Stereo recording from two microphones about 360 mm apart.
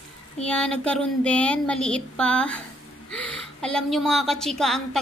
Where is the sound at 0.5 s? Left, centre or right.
Centre.